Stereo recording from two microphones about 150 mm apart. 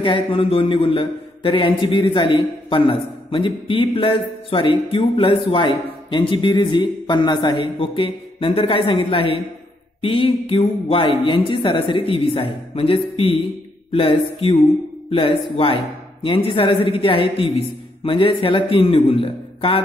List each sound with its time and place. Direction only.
0.0 s a man's voice: 35° left (ahead or behind)